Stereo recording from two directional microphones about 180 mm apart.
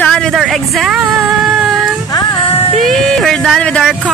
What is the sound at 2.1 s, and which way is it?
Music, 25° left (ahead or behind).